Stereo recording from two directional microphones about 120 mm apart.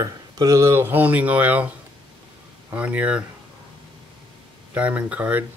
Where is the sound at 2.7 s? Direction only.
10° right (ahead or behind).